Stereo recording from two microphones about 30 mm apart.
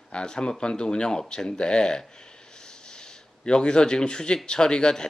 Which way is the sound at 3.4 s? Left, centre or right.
Left.